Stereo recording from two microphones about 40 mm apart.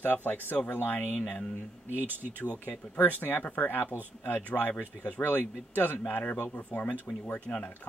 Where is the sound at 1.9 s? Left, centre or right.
Right.